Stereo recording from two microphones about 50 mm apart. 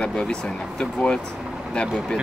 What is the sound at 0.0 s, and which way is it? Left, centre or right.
Speech, centre.